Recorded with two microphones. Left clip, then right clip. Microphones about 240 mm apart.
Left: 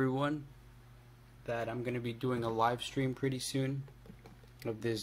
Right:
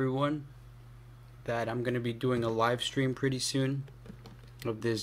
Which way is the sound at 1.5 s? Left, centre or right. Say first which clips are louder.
Right 5 dB; centre.